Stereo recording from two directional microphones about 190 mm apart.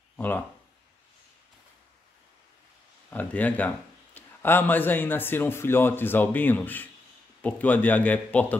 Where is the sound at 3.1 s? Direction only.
10° left (ahead or behind).